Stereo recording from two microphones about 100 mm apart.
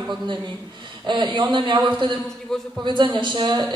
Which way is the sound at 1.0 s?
50° right (ahead or behind).